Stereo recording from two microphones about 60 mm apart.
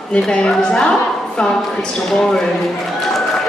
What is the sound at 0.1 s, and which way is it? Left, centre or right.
Speech, centre.